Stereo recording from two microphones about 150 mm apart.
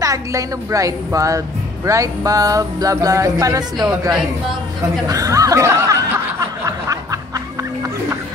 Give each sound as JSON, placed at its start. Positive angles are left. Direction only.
{"t": 0.0, "sound": "music", "side_deg": -20}
{"t": 5.0, "sound": "music", "side_deg": -25}
{"t": 6.6, "sound": "quack", "side_deg": -25}